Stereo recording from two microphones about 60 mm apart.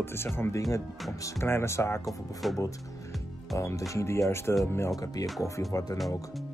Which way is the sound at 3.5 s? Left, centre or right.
Left.